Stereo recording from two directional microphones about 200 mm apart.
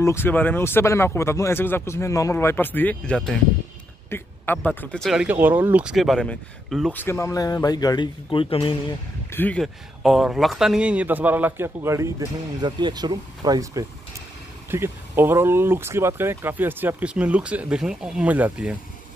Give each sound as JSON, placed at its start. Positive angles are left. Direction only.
{"t": 0.0, "sound": "speech", "side_deg": 10}
{"t": 9.3, "sound": "speech", "side_deg": 10}